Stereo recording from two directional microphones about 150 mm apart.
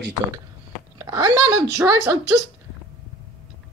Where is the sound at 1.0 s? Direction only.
20° right (ahead or behind).